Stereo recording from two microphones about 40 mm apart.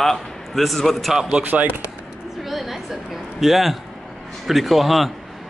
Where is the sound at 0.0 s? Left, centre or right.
Centre.